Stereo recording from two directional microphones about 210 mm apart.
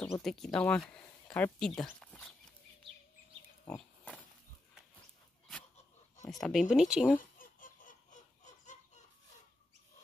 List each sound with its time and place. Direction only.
0.0 s speech: 5° left (ahead or behind)
3.6 s pig: 5° left (ahead or behind)
6.3 s speech: centre (ahead or behind)
7.3 s fowl: 40° left (ahead or behind)